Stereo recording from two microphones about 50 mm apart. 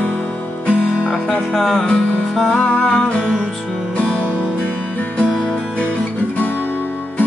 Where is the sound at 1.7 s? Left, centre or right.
Centre.